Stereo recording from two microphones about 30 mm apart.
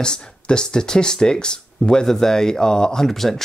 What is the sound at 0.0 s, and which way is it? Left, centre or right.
Speech, left.